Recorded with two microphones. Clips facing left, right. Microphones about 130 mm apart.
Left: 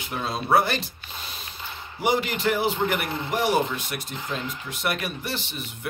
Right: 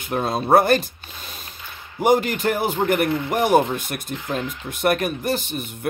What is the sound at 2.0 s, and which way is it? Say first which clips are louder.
A man's voice: right 6 dB; 50° right (ahead or behind).